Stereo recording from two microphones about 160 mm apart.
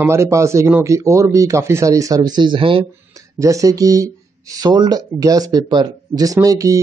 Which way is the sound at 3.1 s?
20° right (ahead or behind).